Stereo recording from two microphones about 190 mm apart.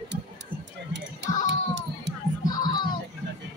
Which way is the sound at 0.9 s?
65° right (ahead or behind).